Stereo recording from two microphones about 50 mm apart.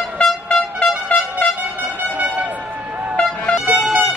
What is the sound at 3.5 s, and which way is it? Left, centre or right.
Music, centre.